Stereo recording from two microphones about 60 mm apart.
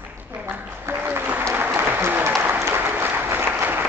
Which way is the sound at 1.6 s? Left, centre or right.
Right.